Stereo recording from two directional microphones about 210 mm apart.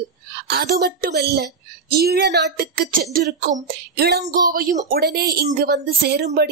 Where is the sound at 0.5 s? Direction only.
50° right (ahead or behind).